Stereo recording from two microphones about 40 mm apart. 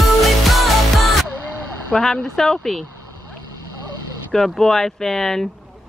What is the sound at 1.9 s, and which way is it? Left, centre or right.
Speech, centre.